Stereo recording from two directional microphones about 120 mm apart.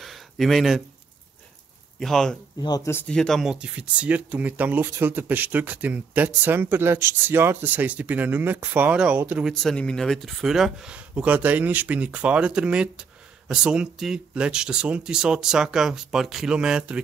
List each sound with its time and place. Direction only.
0.0 s a sound: centre (ahead or behind)
2.0 s speech: 5° left (ahead or behind)
2.6 s speech: 35° left (ahead or behind)
2.9 s speech: 15° left (ahead or behind)
3.2 s speech: centre (ahead or behind)
9.5 s speech: 5° left (ahead or behind)